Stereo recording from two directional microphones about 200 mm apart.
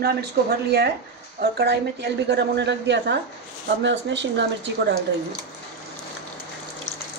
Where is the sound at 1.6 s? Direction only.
55° right (ahead or behind).